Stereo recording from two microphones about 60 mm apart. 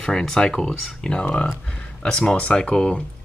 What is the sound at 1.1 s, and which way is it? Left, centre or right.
Speech, centre.